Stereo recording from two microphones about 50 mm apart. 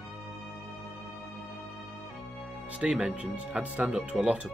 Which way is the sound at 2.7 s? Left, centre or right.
Centre.